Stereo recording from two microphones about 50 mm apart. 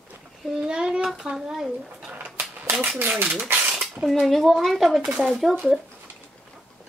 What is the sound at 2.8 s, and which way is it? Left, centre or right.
Speech, right.